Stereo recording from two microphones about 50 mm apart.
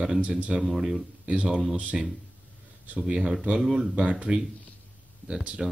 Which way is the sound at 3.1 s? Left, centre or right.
Centre.